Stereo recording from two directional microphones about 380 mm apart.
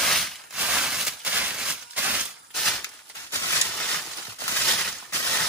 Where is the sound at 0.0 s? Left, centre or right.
Centre.